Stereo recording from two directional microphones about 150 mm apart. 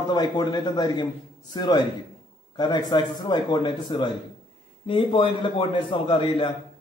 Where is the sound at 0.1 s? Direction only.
25° left (ahead or behind).